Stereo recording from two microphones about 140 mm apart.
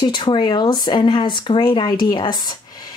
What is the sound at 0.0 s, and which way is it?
A woman's voice, 35° left (ahead or behind).